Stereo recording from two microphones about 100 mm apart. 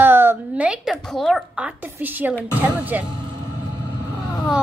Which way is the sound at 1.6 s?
10° right (ahead or behind).